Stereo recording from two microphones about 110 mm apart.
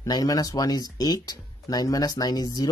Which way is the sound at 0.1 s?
35° left (ahead or behind).